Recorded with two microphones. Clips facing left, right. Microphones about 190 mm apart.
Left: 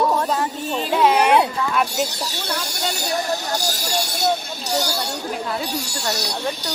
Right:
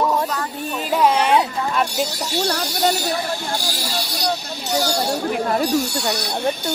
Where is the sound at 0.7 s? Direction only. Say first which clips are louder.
Even; 5° right (ahead or behind).